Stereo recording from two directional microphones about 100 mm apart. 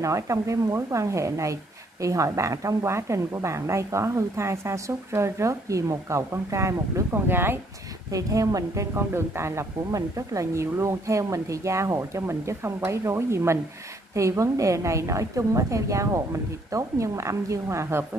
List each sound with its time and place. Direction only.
0.0 s speech: 30° right (ahead or behind)
8.1 s speech: 35° right (ahead or behind)